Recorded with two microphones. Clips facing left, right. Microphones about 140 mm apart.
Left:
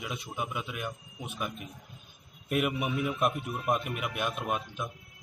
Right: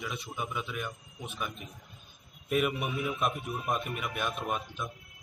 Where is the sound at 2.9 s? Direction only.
Centre (ahead or behind).